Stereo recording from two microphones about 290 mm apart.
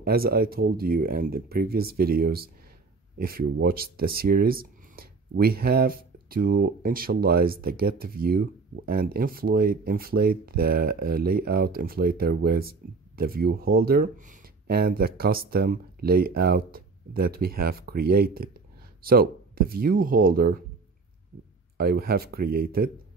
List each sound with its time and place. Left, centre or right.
0.0 s speech: right
21.7 s speech: right